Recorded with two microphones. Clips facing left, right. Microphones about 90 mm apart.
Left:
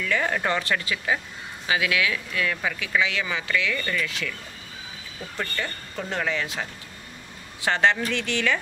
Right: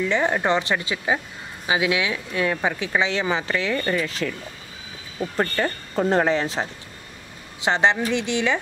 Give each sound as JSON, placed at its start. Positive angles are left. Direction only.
{"t": 0.0, "sound": "speech", "side_deg": -20}
{"t": 5.4, "sound": "speech", "side_deg": -40}
{"t": 7.6, "sound": "speech", "side_deg": -20}